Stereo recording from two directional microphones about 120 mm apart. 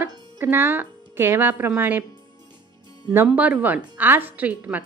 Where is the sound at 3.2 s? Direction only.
10° right (ahead or behind).